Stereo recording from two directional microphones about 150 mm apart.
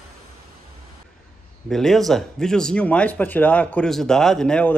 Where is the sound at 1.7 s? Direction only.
Centre (ahead or behind).